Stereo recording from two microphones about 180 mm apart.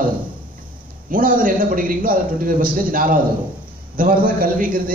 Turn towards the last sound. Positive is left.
turn(degrees=-50)  # may be behind; listen again after turning